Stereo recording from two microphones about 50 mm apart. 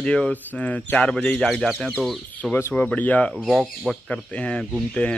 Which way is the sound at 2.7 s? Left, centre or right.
Left.